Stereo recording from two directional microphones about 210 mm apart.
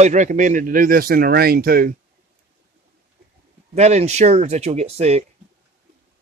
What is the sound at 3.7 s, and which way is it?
Speech, 30° right (ahead or behind).